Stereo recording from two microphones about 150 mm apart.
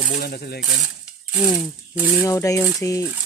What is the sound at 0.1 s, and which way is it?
Speech, 90° left.